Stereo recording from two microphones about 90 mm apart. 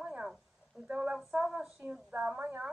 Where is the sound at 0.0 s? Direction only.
15° right (ahead or behind).